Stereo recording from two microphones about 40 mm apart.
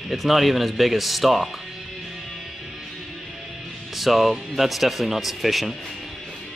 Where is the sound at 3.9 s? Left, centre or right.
Centre.